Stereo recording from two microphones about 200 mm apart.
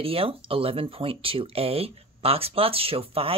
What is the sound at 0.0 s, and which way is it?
Speech, 30° right (ahead or behind).